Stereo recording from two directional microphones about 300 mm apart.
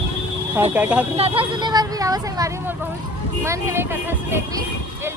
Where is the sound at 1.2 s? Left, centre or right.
Centre.